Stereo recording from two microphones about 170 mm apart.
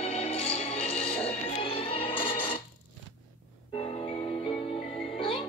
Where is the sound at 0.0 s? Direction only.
35° left (ahead or behind).